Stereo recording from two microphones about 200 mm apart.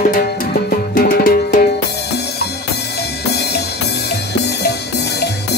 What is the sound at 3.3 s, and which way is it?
Music, 55° left (ahead or behind).